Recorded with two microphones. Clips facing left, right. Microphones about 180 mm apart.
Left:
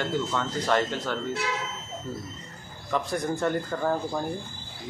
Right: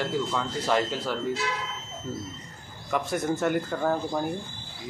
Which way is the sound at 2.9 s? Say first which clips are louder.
Right 1 dB; 5° right (ahead or behind).